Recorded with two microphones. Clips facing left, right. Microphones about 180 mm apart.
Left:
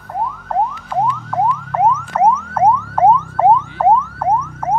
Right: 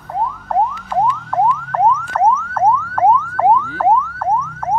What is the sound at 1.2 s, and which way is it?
Car alarm, 5° left (ahead or behind).